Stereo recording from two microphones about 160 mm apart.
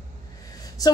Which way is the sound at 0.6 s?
25° left (ahead or behind).